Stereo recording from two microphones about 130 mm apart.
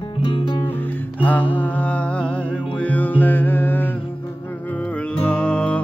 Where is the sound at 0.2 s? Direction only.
40° left (ahead or behind).